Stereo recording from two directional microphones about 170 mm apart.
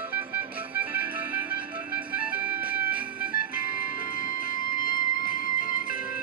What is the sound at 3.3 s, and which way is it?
Music, 60° left (ahead or behind).